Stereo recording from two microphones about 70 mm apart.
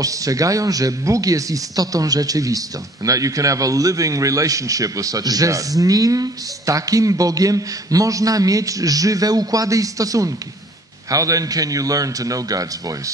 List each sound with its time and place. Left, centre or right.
0.0 s a man's voice: right